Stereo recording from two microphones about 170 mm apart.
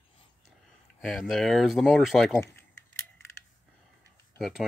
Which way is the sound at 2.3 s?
15° left (ahead or behind).